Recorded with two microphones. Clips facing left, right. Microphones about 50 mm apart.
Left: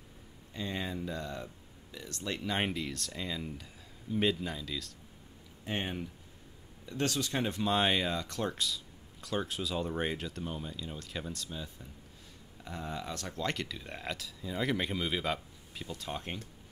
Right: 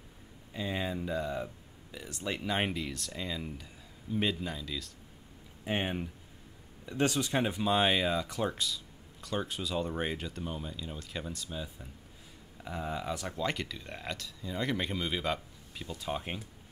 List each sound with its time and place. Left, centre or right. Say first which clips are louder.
0.5 s speech: right 2 dB; centre
5.7 s speech: right 3 dB; centre